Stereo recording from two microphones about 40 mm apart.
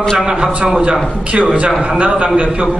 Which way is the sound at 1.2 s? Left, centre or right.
Right.